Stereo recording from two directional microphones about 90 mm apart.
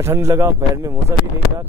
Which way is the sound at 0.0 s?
30° right (ahead or behind).